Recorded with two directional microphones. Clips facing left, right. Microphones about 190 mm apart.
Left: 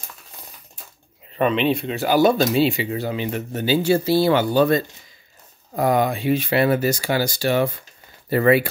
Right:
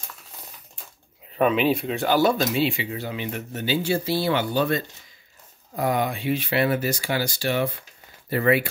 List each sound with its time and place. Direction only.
1.3 s speech: 5° right (ahead or behind)
2.0 s speech: 10° left (ahead or behind)
2.3 s speech: 35° left (ahead or behind)